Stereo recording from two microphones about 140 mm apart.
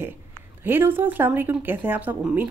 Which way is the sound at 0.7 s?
15° right (ahead or behind).